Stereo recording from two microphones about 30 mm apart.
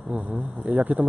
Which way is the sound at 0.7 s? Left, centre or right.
Right.